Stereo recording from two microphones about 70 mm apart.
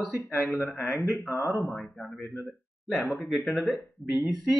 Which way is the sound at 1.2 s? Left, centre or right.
Left.